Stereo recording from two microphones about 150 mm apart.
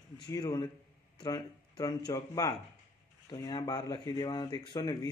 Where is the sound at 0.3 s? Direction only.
25° left (ahead or behind).